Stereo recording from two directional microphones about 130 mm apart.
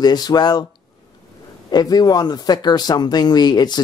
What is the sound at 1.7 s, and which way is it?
Speech, 30° left (ahead or behind).